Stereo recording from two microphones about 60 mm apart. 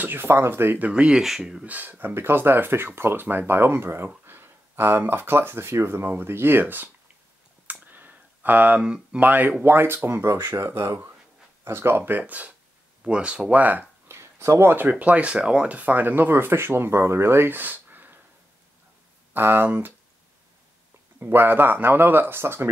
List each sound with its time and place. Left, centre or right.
0.0 s speech: right
0.8 s speech: centre
1.2 s speech: centre
1.7 s speech: right
7.8 s a sound: right
8.8 s speech: centre
9.2 s speech: right
12.0 s speech: right
13.0 s speech: centre
14.0 s speech: right
19.3 s speech: right
21.2 s speech: right